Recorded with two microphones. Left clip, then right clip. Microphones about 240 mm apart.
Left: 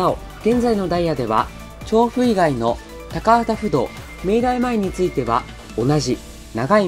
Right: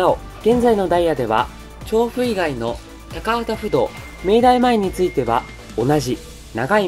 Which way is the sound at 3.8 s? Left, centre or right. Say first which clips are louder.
Right 2 dB; centre.